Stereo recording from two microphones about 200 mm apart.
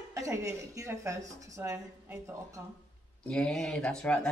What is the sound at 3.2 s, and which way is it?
Speech, 5° left (ahead or behind).